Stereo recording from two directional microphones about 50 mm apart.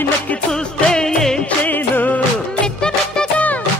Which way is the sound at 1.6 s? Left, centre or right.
Left.